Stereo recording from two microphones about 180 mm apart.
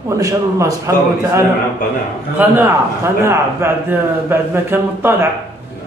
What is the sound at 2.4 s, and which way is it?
A man's voice, 10° right (ahead or behind).